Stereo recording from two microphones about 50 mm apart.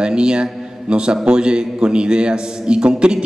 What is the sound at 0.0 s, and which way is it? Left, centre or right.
A man's voice, centre.